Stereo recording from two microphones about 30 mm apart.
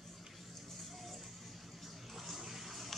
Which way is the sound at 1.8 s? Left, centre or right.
Centre.